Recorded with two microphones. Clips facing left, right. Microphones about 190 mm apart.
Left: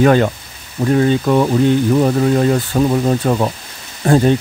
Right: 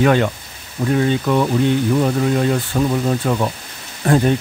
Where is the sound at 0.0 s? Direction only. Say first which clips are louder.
Left 3 dB; 40° left (ahead or behind).